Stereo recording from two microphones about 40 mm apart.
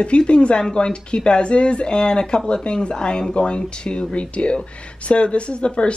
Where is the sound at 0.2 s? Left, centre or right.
Left.